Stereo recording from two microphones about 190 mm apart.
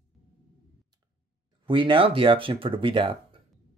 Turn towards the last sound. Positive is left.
turn(degrees=-25)  # may be behind; listen again after turning